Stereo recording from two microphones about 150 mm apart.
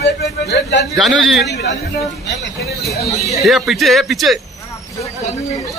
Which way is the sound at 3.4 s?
Centre (ahead or behind).